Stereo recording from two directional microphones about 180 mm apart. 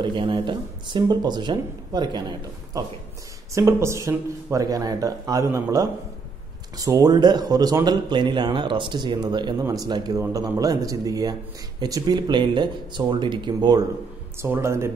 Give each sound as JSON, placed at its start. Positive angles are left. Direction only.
{"t": 0.0, "sound": "speech", "side_deg": -25}